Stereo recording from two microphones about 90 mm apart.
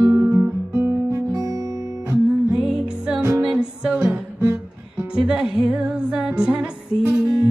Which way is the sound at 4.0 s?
30° right (ahead or behind).